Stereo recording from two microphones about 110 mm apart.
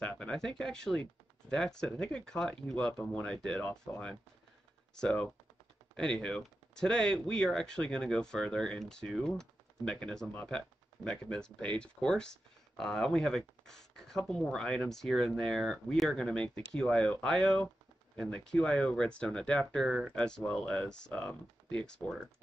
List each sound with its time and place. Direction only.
0.0 s speech: 10° left (ahead or behind)